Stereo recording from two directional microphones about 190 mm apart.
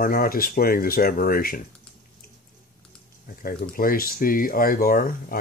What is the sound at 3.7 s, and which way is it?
Speech, 50° left (ahead or behind).